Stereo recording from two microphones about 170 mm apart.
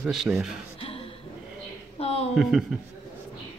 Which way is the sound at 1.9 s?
35° left (ahead or behind).